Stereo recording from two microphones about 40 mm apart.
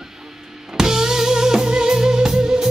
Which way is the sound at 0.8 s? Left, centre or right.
Centre.